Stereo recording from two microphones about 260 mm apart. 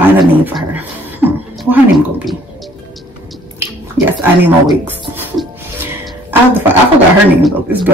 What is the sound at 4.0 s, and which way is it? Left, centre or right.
Speech, centre.